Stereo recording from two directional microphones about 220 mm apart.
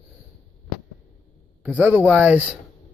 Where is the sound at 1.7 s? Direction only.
10° right (ahead or behind).